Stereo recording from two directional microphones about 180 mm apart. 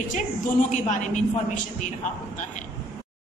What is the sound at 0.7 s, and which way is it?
A woman's voice, 45° left (ahead or behind).